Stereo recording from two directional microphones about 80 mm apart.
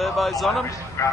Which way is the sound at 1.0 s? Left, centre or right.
Left.